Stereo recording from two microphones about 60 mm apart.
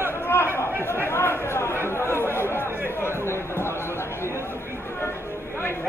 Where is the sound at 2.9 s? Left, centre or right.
Left.